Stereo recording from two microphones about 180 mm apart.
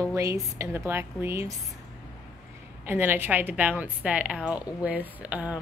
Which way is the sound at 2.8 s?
10° right (ahead or behind).